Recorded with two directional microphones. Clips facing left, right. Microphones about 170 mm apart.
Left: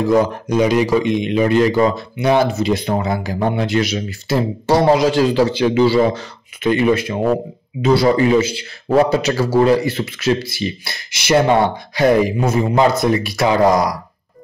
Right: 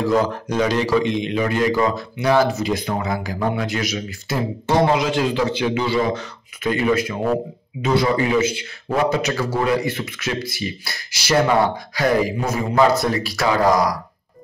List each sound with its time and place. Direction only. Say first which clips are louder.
0.0 s a man's voice: left 4 dB; 15° left (ahead or behind)
7.8 s a man's voice: left 5 dB; 35° left (ahead or behind)